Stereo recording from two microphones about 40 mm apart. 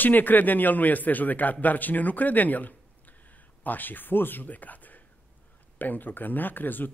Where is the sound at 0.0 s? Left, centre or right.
Left.